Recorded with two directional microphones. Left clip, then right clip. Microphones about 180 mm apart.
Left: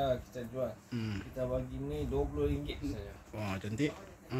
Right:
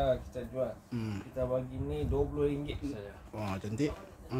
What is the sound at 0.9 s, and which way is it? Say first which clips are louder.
Speech: right 2 dB; 5° right (ahead or behind).